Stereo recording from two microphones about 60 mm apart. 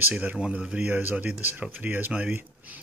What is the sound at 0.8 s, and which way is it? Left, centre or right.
Speech, right.